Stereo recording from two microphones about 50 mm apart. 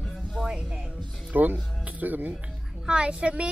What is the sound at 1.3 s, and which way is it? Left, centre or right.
Speech, right.